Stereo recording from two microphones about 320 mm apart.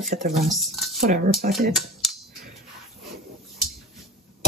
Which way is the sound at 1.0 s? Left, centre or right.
Right.